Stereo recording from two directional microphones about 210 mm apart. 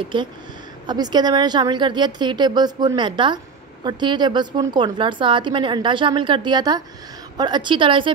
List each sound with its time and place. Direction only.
0.0 s a woman's voice: 25° right (ahead or behind)